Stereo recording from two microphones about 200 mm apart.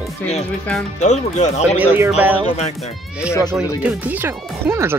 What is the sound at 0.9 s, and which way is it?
Speech, 35° left (ahead or behind).